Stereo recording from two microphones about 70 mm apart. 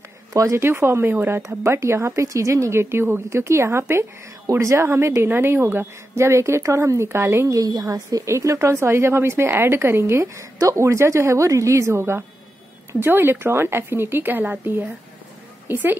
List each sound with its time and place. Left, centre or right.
0.3 s speech: right
0.6 s speech: right
7.8 s a woman's voice: right
8.3 s speech: right
10.2 s a woman's voice: right